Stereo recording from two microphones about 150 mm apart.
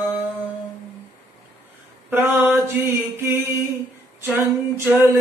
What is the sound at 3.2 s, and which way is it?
Mantra, 15° right (ahead or behind).